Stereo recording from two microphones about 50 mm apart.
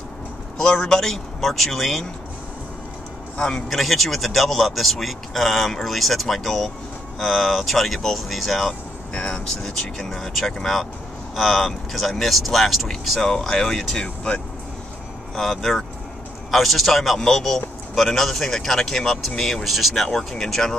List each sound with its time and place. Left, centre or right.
0.7 s a man's voice: centre
3.3 s a man's voice: centre
3.6 s a man's voice: centre
9.1 s speech: left
9.5 s a man's voice: centre
14.0 s speech: left
15.3 s a man's voice: centre